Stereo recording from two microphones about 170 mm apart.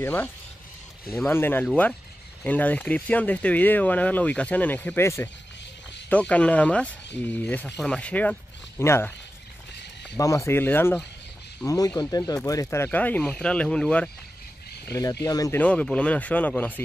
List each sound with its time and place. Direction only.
0.0 s speech: 10° left (ahead or behind)
10.1 s speech: 15° left (ahead or behind)
14.9 s speech: 20° left (ahead or behind)
15.6 s speech: 5° left (ahead or behind)